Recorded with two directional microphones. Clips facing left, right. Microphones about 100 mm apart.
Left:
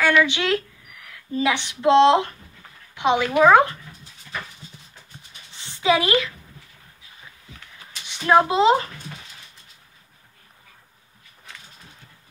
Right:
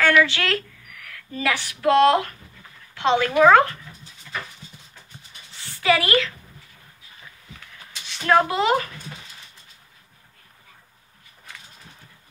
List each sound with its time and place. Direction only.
0.0 s a woman's voice: 15° left (ahead or behind)
5.6 s a woman's voice: 20° left (ahead or behind)
8.1 s speech: 20° left (ahead or behind)